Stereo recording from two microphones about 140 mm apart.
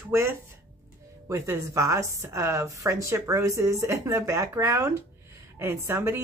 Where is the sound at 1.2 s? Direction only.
20° right (ahead or behind).